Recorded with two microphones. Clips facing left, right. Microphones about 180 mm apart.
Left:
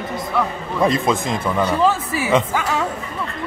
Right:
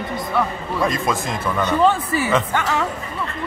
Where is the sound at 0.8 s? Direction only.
25° left (ahead or behind).